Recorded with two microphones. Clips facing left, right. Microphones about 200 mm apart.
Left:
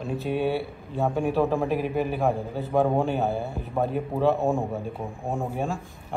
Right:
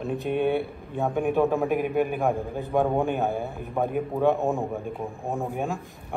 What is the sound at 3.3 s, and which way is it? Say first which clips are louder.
Speech: even; 15° right (ahead or behind).